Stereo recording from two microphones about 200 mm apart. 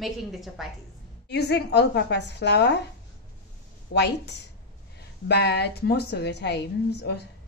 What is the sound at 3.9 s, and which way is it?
A woman's voice, 55° left (ahead or behind).